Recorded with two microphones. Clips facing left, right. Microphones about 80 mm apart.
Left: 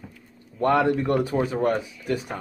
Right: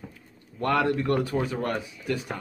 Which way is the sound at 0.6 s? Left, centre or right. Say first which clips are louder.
Left 4 dB; centre.